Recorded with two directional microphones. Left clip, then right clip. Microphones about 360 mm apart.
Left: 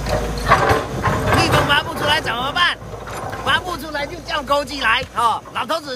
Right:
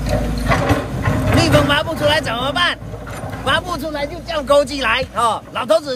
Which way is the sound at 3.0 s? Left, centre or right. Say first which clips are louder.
Left 2 dB; centre.